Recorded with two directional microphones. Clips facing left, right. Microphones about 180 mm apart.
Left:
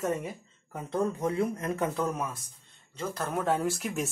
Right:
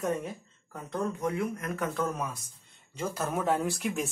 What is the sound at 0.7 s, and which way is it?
Speech, 30° left (ahead or behind).